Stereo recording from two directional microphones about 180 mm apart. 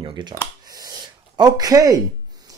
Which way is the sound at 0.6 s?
20° right (ahead or behind).